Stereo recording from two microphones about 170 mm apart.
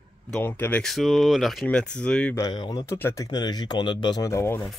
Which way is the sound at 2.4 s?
25° left (ahead or behind).